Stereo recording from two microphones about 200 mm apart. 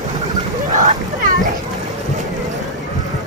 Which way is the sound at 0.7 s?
40° right (ahead or behind).